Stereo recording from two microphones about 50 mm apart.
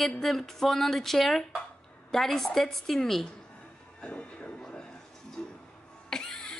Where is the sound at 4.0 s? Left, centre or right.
Left.